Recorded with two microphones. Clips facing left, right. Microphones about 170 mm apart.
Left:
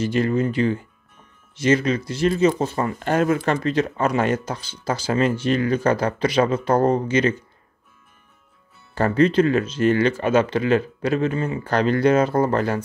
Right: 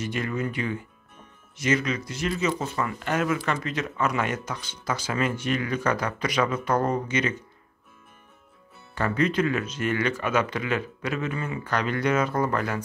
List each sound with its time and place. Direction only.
0.0 s speech: 30° left (ahead or behind)
8.9 s speech: 30° left (ahead or behind)